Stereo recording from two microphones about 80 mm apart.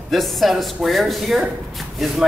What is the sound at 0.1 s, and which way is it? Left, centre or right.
A man's voice, centre.